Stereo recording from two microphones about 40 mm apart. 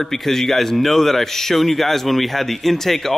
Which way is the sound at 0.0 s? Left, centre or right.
Centre.